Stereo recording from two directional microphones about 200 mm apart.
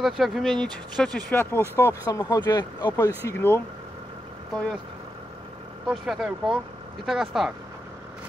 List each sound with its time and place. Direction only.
0.0 s speech: centre (ahead or behind)
5.9 s speech: centre (ahead or behind)